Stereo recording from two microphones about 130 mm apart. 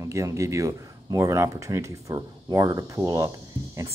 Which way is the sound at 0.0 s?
25° right (ahead or behind).